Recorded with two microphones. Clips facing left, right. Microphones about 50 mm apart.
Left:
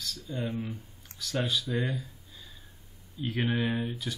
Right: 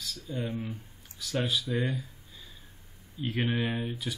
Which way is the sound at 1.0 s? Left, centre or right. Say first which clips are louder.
Even; centre.